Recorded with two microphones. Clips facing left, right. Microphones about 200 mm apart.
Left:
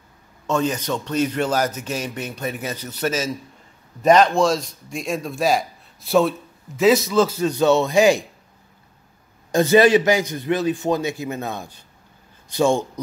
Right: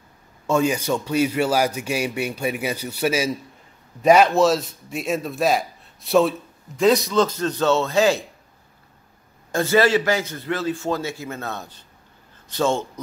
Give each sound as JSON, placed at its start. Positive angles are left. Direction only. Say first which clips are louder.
{"t": 0.5, "sound": "a man's voice", "louder": "right 2 dB", "side_deg": -10}
{"t": 9.5, "sound": "a man's voice", "louder": "left 4 dB", "side_deg": 20}